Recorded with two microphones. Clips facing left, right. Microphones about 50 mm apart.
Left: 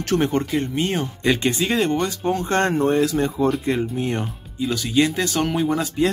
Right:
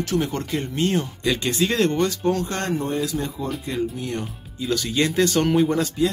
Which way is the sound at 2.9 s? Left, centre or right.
Left.